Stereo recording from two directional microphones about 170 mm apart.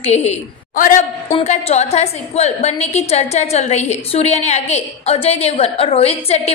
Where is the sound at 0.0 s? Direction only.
40° left (ahead or behind).